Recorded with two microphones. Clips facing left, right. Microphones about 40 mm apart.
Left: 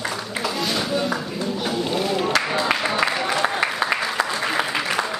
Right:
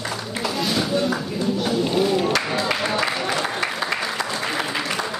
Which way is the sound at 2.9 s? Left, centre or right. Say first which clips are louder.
Left 1 dB; centre.